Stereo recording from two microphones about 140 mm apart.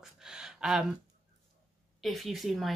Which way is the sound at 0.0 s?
5° right (ahead or behind).